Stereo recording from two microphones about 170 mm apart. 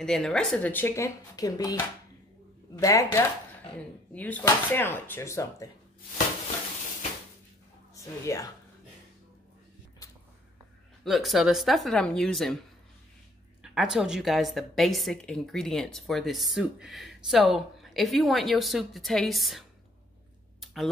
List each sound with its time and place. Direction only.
0.0 s speech: 5° left (ahead or behind)
7.9 s speech: 20° left (ahead or behind)
11.1 s a woman's voice: centre (ahead or behind)
13.6 s a woman's voice: centre (ahead or behind)
20.6 s a sound: centre (ahead or behind)